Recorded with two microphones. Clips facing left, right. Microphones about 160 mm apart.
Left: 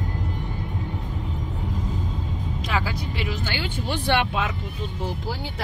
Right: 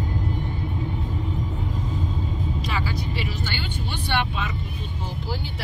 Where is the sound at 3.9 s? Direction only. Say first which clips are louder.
Left 4 dB; 90° left.